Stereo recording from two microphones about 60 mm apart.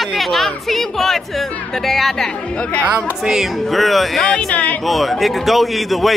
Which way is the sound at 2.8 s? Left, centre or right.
Centre.